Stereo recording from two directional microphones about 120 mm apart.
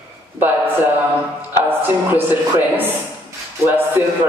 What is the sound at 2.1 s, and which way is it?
Speech, 15° right (ahead or behind).